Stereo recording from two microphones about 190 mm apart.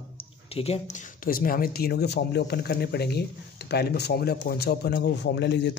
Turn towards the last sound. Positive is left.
turn(degrees=65)  # may be behind; listen again after turning